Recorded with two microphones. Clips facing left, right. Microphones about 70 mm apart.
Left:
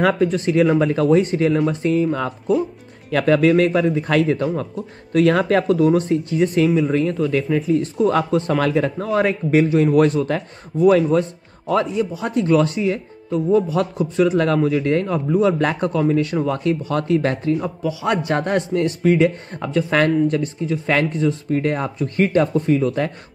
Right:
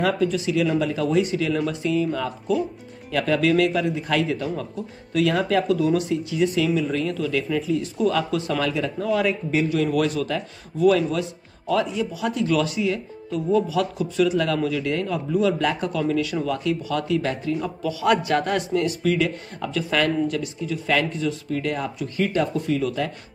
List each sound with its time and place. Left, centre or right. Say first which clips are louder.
0.0 s speech: left 4 dB; left
3.1 s speech: left 5 dB; left
11.7 s speech: left 4 dB; left
17.8 s speech: right 1 dB; left